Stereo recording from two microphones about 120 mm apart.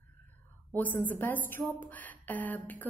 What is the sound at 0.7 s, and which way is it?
A woman's voice, 15° left (ahead or behind).